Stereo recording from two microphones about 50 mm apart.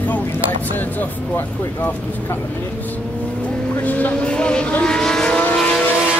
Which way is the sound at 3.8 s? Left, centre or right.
Left.